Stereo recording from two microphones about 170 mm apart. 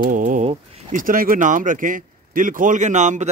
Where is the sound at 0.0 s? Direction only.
50° right (ahead or behind).